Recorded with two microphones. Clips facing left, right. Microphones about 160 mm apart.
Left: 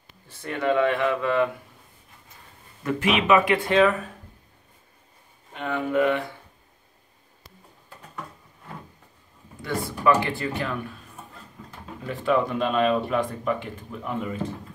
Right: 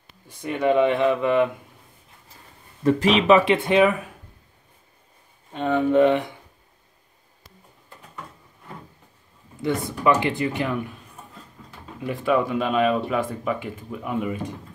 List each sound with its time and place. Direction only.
0.3 s speech: 15° right (ahead or behind)
2.8 s speech: 30° right (ahead or behind); by 4.1 s 15° right (ahead or behind)
5.5 s speech: 25° right (ahead or behind)
9.6 s speech: 20° right (ahead or behind)
12.0 s speech: 10° right (ahead or behind)